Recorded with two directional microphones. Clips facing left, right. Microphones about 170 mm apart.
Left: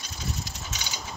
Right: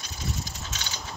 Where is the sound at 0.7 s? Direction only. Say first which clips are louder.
Even; centre (ahead or behind).